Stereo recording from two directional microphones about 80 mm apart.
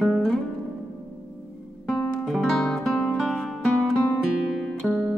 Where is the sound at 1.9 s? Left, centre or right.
Centre.